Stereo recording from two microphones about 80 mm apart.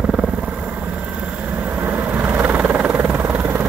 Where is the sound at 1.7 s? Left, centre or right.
Right.